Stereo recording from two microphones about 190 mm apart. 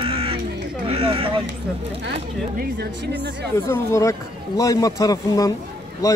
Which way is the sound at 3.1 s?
15° left (ahead or behind).